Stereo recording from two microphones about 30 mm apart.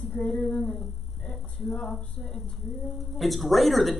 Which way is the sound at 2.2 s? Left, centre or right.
Left.